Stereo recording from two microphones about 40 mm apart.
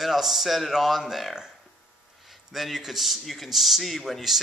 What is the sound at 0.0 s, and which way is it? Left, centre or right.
A man's voice, centre.